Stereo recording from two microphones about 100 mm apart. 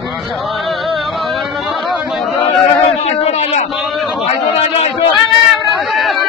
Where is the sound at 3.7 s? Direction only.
Centre (ahead or behind).